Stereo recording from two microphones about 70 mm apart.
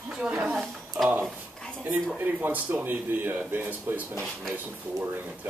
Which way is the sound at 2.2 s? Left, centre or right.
Right.